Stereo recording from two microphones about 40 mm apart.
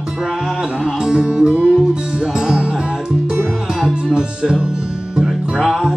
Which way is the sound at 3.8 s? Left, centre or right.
Right.